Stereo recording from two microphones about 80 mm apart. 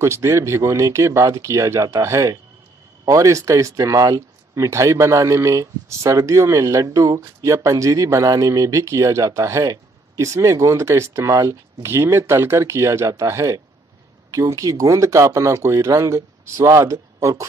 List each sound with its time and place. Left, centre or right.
0.0 s speech: right